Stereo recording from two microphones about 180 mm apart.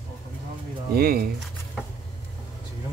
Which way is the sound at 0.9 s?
55° right (ahead or behind).